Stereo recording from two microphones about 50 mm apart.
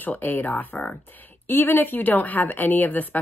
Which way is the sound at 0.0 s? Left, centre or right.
Left.